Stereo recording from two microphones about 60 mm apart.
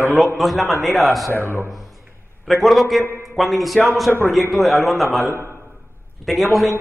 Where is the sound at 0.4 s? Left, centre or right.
Centre.